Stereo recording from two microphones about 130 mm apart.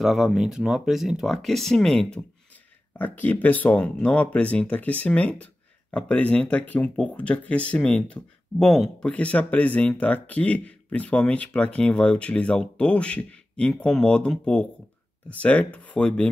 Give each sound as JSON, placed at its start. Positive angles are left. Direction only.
{"t": 0.0, "sound": "speech", "side_deg": 0}